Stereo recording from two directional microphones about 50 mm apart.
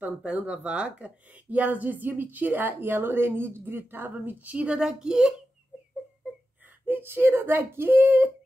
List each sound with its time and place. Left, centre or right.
0.3 s a woman's voice: right
4.1 s a woman's voice: right
4.8 s speech: centre
6.9 s speech: right